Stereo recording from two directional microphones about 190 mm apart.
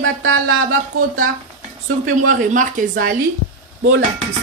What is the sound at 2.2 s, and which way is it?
Speech, 45° right (ahead or behind).